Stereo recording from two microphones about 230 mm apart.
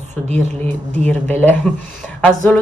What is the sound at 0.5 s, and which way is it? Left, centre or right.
Speech, centre.